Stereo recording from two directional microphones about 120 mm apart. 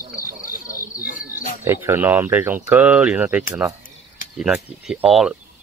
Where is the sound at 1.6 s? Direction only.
20° right (ahead or behind); by 5.3 s centre (ahead or behind).